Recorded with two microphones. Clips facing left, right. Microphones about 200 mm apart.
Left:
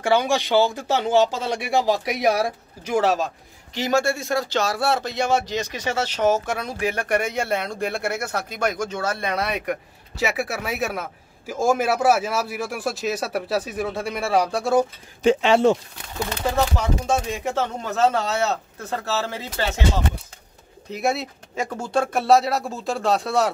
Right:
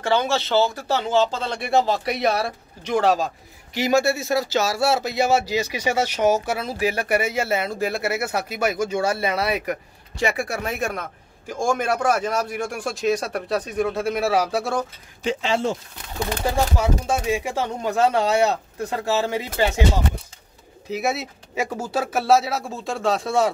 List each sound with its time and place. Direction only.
0.0 s speech: 10° left (ahead or behind)
3.7 s speech: 10° right (ahead or behind)
15.2 s speech: 65° left (ahead or behind)
16.4 s speech: 10° right (ahead or behind)
20.9 s speech: centre (ahead or behind)